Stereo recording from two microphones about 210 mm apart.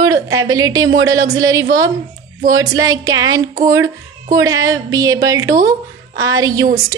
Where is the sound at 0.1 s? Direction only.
15° right (ahead or behind).